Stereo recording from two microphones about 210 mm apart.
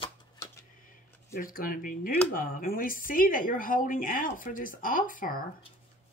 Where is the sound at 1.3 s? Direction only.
40° left (ahead or behind).